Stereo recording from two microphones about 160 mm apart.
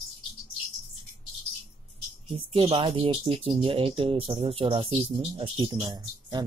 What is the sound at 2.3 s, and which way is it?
Speech, 35° right (ahead or behind).